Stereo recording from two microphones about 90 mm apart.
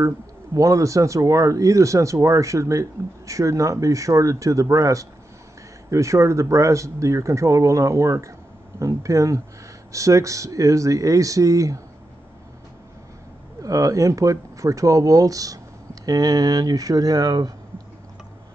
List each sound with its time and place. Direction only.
0.6 s speech: 40° right (ahead or behind)
13.6 s speech: 40° right (ahead or behind)